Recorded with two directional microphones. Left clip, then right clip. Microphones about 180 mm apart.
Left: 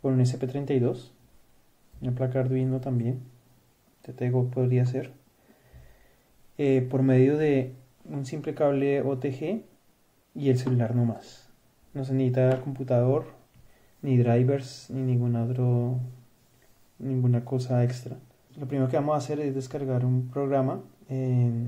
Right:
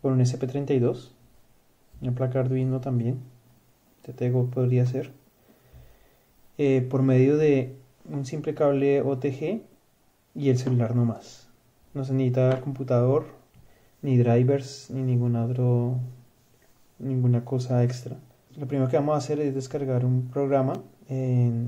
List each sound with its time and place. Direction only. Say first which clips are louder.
0.0 s speech: right 1 dB; centre (ahead or behind)
6.5 s speech: right 1 dB; centre (ahead or behind)
17.0 s speech: right 1 dB; centre (ahead or behind)